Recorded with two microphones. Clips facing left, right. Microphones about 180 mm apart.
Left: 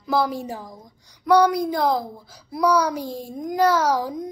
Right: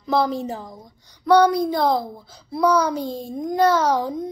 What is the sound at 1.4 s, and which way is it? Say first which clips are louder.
A child's voice: right 2 dB; 30° right (ahead or behind).